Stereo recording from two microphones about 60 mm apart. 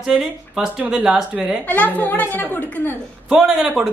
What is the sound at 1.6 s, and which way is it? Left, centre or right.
A woman's voice, left.